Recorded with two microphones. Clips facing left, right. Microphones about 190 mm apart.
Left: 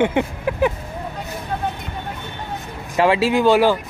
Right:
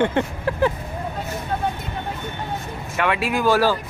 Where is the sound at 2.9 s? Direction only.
30° left (ahead or behind).